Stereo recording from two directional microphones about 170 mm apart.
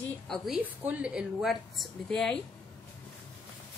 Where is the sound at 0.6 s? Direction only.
10° right (ahead or behind).